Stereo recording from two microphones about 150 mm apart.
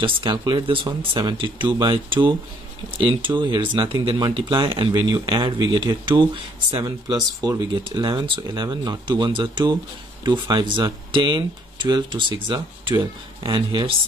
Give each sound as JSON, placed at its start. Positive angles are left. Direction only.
{"t": 0.0, "sound": "speech", "side_deg": -30}